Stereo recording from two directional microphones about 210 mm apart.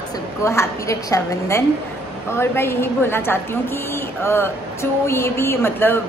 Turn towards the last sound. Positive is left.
turn(degrees=10)  # may be behind; listen again after turning